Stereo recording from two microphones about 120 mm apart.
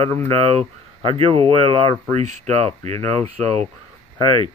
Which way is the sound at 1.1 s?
50° right (ahead or behind).